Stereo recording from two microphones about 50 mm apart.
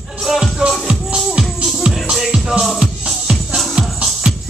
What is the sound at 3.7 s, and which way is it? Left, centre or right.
Music, centre.